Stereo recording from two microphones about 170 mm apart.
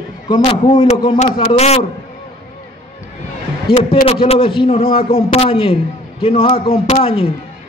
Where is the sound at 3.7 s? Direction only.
35° left (ahead or behind).